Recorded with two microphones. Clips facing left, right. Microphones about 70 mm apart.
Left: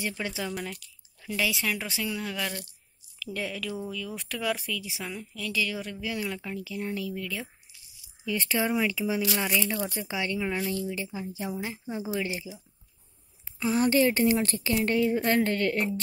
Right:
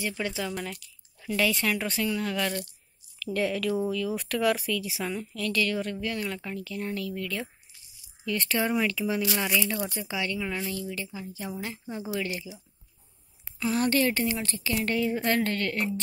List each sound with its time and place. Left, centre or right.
0.0 s a woman's voice: left
0.5 s drip: centre
1.3 s speech: centre
7.7 s a sound: right
8.3 s a woman's voice: centre
14.2 s a woman's voice: left